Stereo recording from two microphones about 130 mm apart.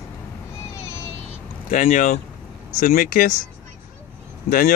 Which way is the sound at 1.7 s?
80° left.